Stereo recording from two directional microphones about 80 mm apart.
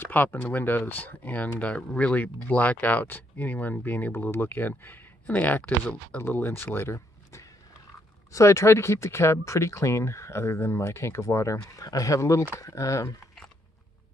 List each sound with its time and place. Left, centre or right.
0.0 s speech: left